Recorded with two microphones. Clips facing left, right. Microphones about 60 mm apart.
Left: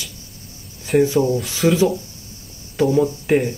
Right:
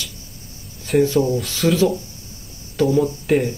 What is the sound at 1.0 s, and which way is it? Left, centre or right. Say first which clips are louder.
Speech: even; centre.